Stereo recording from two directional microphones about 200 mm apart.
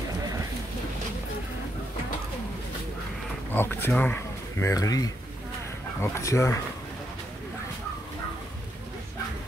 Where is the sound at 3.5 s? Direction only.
10° left (ahead or behind).